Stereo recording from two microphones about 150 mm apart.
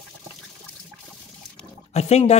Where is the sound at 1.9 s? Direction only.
45° left (ahead or behind).